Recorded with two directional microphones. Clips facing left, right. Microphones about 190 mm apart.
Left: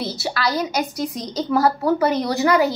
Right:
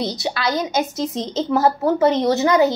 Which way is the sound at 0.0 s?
20° right (ahead or behind).